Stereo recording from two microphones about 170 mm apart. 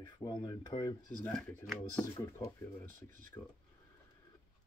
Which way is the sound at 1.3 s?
Centre (ahead or behind).